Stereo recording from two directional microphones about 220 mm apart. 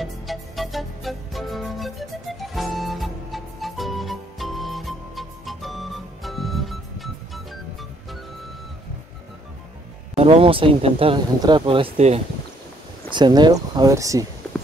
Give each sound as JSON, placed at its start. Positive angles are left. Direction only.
{"t": 0.0, "sound": "music", "side_deg": 0}
{"t": 10.1, "sound": "speech", "side_deg": -25}
{"t": 14.4, "sound": "a sound", "side_deg": 10}